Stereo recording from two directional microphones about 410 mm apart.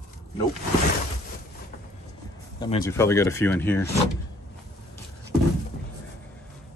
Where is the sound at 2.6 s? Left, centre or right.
Centre.